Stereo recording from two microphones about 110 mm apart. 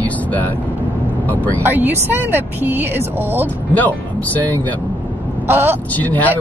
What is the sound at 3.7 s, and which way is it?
Speech, 15° left (ahead or behind).